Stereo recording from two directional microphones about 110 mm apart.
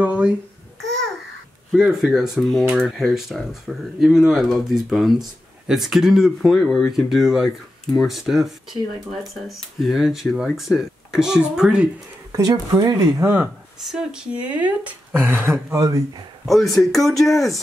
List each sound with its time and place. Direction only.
0.0 s a child's voice: 10° right (ahead or behind)
0.8 s babbling: 5° left (ahead or behind)
1.8 s speech: 5° right (ahead or behind)
12.3 s speech: 35° right (ahead or behind)
13.7 s speech: 5° right (ahead or behind)
15.7 s speech: 35° right (ahead or behind)
16.4 s speech: centre (ahead or behind)